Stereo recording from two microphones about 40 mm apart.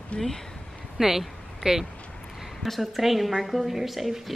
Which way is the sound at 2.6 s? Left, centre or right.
Centre.